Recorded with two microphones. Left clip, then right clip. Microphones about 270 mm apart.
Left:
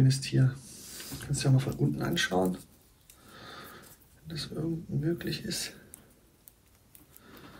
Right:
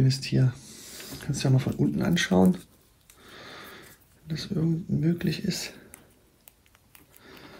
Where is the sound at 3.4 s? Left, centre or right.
Right.